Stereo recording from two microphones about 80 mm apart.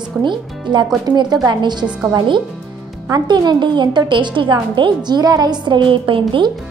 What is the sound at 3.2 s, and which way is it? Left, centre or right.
Speech, right.